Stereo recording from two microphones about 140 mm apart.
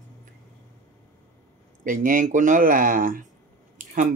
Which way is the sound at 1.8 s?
75° right (ahead or behind).